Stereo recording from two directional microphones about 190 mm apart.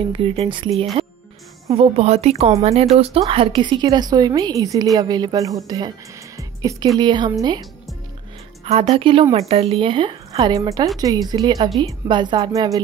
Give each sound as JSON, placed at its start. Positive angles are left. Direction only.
{"t": 0.1, "sound": "a woman's voice", "side_deg": -30}
{"t": 8.9, "sound": "speech", "side_deg": -30}